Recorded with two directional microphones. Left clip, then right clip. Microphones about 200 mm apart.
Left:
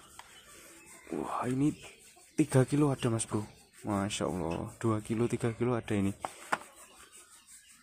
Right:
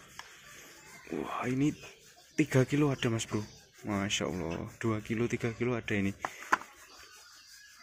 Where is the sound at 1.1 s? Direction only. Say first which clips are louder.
Left 1 dB; 10° left (ahead or behind).